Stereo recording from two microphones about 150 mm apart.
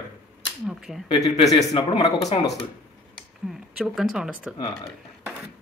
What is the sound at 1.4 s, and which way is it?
Speech, 25° left (ahead or behind).